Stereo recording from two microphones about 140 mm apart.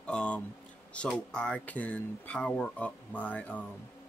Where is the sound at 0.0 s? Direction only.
10° left (ahead or behind).